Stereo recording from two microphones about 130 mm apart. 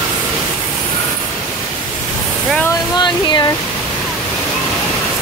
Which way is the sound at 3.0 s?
30° left (ahead or behind).